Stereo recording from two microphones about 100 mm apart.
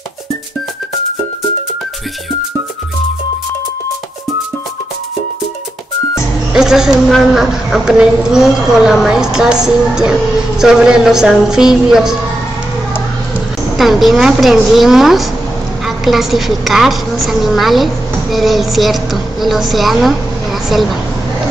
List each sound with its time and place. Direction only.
6.5 s a woman's voice: 5° right (ahead or behind)
13.7 s a woman's voice: centre (ahead or behind)